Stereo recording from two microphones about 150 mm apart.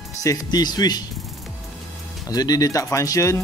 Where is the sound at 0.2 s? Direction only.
25° left (ahead or behind).